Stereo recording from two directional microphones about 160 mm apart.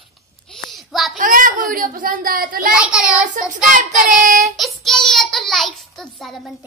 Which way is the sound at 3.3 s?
50° right (ahead or behind).